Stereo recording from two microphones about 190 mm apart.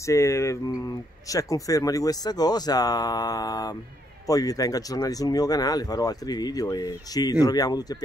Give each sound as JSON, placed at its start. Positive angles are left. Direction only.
{"t": 0.0, "sound": "speech", "side_deg": 15}